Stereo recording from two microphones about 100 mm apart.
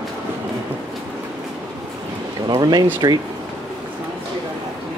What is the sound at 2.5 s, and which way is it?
Speech, 45° right (ahead or behind).